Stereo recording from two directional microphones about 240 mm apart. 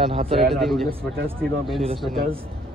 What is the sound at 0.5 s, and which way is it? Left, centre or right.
Speech, centre.